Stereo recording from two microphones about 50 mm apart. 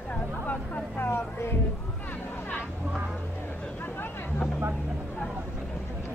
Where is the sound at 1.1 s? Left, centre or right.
Left.